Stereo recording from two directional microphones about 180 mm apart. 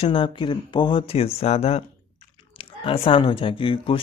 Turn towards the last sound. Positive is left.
turn(degrees=30)  # may be behind; listen again after turning